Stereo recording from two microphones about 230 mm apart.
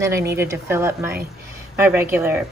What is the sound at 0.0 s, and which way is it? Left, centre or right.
A woman's voice, centre.